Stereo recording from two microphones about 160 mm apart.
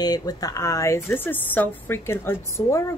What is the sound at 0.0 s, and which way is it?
Speech, 25° left (ahead or behind).